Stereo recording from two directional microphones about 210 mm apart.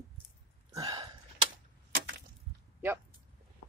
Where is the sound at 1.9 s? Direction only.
65° right (ahead or behind).